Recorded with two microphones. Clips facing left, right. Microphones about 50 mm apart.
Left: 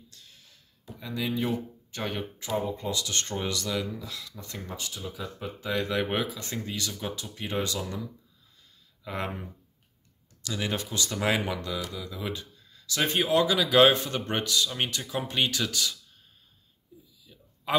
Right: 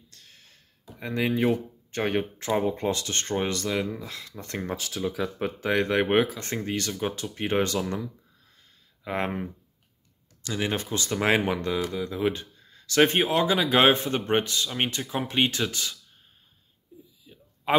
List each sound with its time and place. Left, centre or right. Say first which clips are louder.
0.1 s a sound: right 1 dB; right
1.9 s speech: right 8 dB; right
4.7 s speech: right 8 dB; right
9.0 s speech: right 5 dB; right
13.2 s speech: right 1 dB; right
17.2 s a sound: right 4 dB; right